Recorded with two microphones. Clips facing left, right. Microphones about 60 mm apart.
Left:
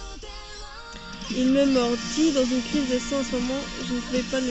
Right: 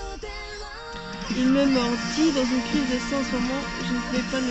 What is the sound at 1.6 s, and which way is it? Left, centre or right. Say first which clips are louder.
Speech: left 1 dB; right.